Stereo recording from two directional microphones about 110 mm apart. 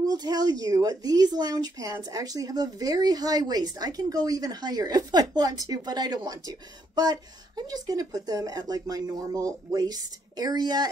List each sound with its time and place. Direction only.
0.1 s a woman's voice: 35° right (ahead or behind)